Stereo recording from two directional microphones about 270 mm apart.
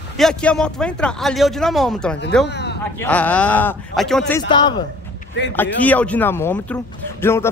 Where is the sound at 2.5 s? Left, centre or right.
Left.